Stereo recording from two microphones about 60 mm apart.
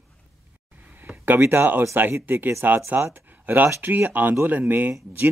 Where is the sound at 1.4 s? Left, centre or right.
Right.